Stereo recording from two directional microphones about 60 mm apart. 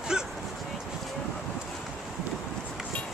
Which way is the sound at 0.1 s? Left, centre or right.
Centre.